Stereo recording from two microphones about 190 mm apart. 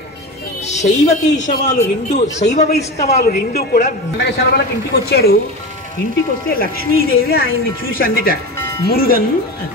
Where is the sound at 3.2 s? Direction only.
55° left (ahead or behind).